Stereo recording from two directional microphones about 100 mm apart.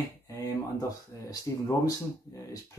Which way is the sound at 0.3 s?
35° left (ahead or behind).